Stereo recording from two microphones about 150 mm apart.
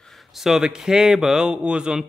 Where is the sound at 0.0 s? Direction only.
Centre (ahead or behind).